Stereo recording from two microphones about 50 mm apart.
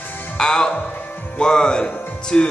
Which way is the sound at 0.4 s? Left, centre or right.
Centre.